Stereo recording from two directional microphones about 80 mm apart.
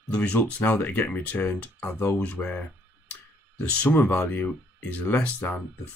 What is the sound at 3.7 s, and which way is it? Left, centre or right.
Speech, centre.